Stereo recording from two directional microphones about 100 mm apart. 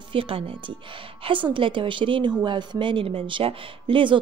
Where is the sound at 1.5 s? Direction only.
60° right (ahead or behind).